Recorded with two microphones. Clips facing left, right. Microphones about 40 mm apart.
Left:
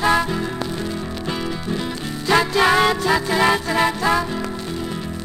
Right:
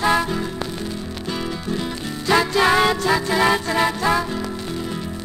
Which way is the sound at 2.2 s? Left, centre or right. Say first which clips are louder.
Left 1 dB; centre.